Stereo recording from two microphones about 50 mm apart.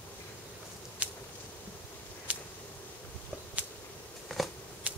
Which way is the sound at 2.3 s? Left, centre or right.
Right.